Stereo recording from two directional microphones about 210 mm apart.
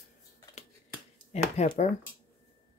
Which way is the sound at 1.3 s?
30° left (ahead or behind).